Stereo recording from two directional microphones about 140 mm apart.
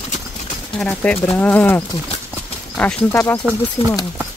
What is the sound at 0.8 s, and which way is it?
Speech, 10° left (ahead or behind).